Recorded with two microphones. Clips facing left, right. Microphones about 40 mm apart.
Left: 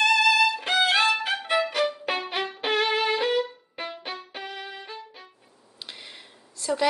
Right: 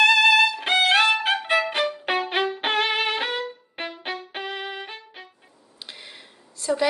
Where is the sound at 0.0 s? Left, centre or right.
Right.